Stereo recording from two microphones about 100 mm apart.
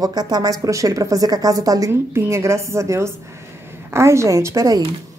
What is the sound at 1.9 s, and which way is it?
A woman's voice, 25° right (ahead or behind).